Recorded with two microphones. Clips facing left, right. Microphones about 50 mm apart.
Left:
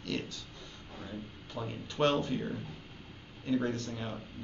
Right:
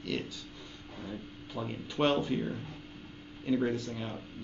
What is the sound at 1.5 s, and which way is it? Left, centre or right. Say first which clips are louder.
Speech: right 2 dB; centre.